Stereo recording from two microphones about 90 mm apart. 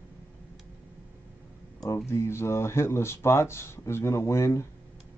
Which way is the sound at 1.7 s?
30° left (ahead or behind).